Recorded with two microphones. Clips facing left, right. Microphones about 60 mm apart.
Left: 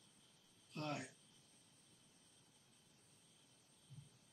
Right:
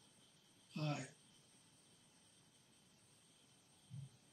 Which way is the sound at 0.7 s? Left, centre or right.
Left.